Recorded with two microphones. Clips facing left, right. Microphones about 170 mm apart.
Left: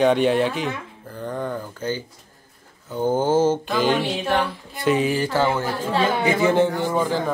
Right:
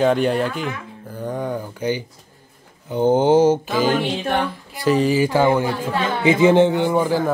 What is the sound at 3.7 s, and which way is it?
Speech, centre (ahead or behind).